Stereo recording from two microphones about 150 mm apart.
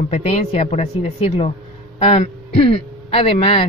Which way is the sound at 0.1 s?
45° left (ahead or behind).